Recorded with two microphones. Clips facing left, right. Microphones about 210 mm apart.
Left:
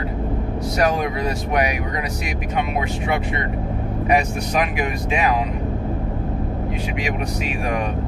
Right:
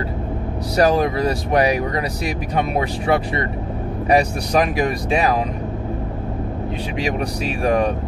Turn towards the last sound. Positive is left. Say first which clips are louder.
# right 5 dB
turn(degrees=-35)  # may be behind; listen again after turning